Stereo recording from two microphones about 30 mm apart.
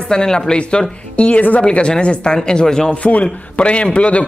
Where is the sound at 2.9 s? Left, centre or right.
Left.